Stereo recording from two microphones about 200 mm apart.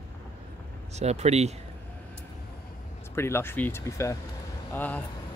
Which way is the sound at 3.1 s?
10° left (ahead or behind).